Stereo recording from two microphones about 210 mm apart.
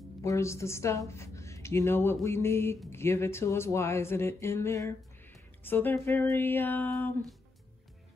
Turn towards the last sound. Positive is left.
turn(degrees=10)  # may be behind; listen again after turning